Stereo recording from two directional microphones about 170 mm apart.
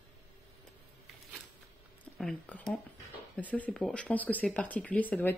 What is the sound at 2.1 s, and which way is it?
Speech, 5° left (ahead or behind).